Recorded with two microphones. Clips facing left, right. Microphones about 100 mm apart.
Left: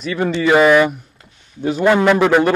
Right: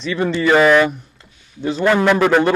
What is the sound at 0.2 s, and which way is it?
A man's voice, 15° left (ahead or behind).